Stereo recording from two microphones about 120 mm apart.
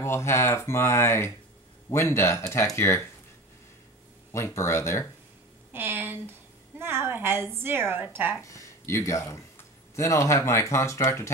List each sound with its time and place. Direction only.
0.0 s speech: 20° left (ahead or behind)
4.3 s speech: 25° left (ahead or behind)
5.7 s a sound: 15° right (ahead or behind)
6.8 s a woman's voice: 20° right (ahead or behind)
8.4 s speech: 25° left (ahead or behind)